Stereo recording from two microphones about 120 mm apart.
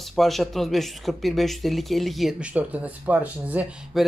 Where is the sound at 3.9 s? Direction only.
5° right (ahead or behind).